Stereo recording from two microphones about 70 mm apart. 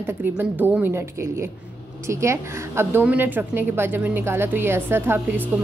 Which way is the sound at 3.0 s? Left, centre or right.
Right.